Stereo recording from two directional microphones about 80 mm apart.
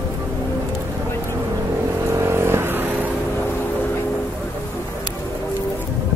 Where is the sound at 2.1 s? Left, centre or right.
Right.